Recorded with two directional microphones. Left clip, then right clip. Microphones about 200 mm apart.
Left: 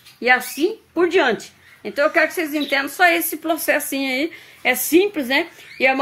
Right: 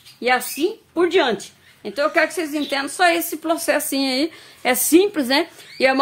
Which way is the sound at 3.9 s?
20° right (ahead or behind).